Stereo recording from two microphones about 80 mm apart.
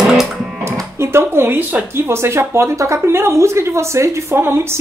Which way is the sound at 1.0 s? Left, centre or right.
Right.